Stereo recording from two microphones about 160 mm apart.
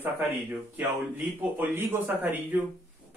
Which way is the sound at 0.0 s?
10° right (ahead or behind).